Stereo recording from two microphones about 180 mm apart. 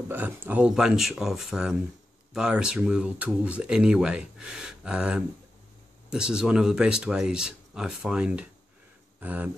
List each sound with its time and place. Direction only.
0.1 s speech: 10° right (ahead or behind)